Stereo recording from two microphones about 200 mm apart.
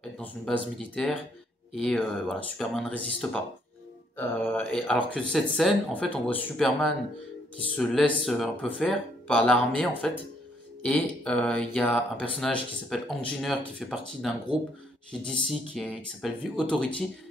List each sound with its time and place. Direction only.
0.2 s speech: 5° left (ahead or behind)
4.6 s speech: 5° left (ahead or behind)